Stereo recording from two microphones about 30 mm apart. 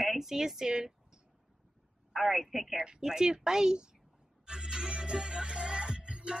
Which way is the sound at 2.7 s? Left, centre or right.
Right.